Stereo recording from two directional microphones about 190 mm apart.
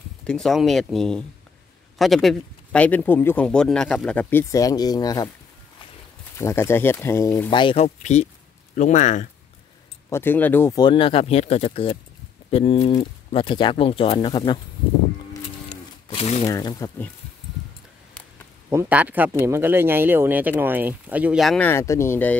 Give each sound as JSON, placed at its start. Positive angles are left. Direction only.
{"t": 0.2, "sound": "speech", "side_deg": 5}
{"t": 6.3, "sound": "speech", "side_deg": 15}
{"t": 10.0, "sound": "speech", "side_deg": 10}
{"t": 16.1, "sound": "speech", "side_deg": 30}
{"t": 16.4, "sound": "speech", "side_deg": 20}
{"t": 18.7, "sound": "speech", "side_deg": -10}